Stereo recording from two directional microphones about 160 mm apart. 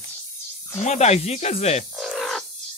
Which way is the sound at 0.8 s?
45° left (ahead or behind).